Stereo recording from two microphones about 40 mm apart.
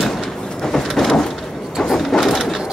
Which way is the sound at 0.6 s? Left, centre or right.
Centre.